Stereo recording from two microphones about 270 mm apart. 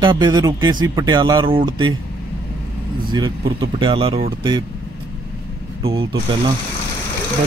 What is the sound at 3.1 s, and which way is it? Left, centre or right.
A man's voice, centre.